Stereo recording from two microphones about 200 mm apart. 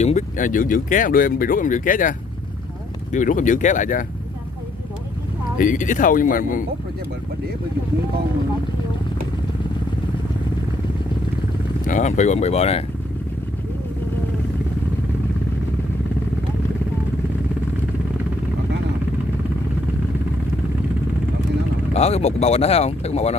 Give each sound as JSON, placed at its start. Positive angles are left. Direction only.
{"t": 0.0, "sound": "speech", "side_deg": 40}
{"t": 5.6, "sound": "speech", "side_deg": 40}
{"t": 11.8, "sound": "speech", "side_deg": 40}
{"t": 21.9, "sound": "speech", "side_deg": 30}